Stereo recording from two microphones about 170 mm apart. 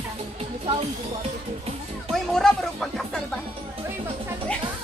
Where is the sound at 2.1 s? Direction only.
Centre (ahead or behind).